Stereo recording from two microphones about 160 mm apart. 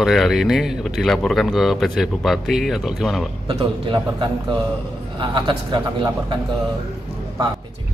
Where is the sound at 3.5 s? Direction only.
35° right (ahead or behind).